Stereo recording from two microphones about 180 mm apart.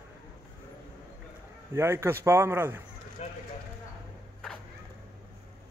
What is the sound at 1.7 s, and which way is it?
A man's voice, 15° right (ahead or behind).